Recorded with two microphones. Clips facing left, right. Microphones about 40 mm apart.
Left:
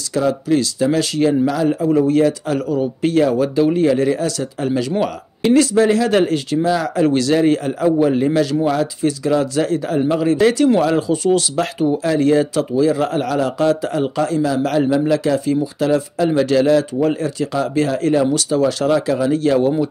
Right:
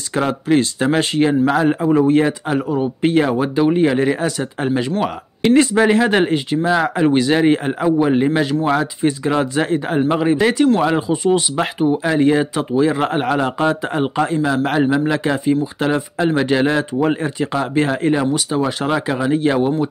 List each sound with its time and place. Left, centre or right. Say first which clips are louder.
0.1 s speech: even; right